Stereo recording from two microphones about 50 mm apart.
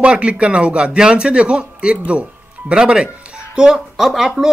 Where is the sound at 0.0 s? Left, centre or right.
Centre.